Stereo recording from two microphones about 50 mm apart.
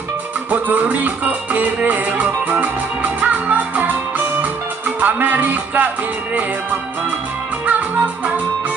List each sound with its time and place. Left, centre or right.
0.5 s music: right